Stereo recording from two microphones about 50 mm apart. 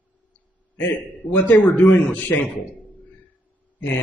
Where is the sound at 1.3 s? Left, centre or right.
Left.